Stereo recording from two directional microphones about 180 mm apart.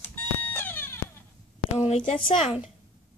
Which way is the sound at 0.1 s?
10° left (ahead or behind).